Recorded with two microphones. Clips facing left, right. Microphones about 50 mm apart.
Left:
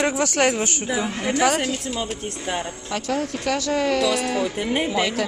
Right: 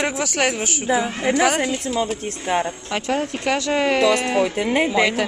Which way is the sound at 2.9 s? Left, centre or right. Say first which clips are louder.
Right 1 dB; right.